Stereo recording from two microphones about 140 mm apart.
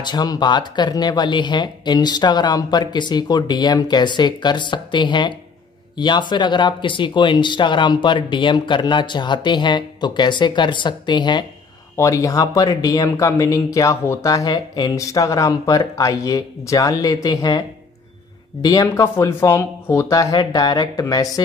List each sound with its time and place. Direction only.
0.0 s speech: 30° left (ahead or behind)
12.0 s speech: 25° left (ahead or behind)